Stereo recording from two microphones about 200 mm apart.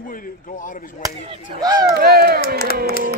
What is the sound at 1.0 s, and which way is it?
Speech, 20° right (ahead or behind).